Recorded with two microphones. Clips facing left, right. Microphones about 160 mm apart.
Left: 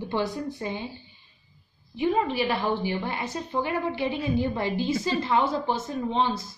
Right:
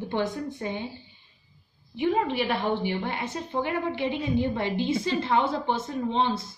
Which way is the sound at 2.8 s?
20° right (ahead or behind).